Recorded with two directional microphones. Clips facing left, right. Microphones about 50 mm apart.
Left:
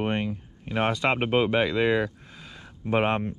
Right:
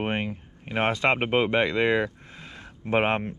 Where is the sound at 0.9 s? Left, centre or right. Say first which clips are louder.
Right 1 dB; centre.